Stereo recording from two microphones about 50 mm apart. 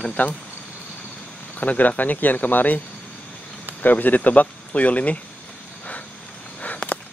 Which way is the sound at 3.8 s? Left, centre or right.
Left.